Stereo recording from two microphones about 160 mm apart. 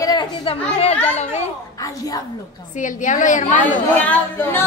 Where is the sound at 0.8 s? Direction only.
45° left (ahead or behind).